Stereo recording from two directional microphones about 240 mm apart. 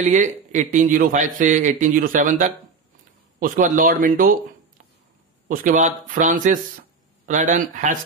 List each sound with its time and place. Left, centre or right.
0.0 s a man's voice: right
5.5 s a man's voice: right